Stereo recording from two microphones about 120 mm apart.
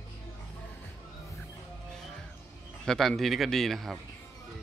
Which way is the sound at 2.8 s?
Centre (ahead or behind).